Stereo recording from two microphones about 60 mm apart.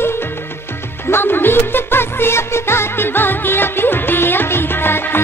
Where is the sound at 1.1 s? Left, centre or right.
Left.